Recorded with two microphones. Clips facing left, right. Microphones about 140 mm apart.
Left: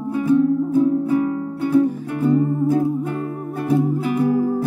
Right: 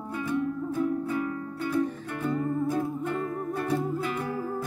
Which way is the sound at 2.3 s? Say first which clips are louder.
Left 9 dB; 20° left (ahead or behind).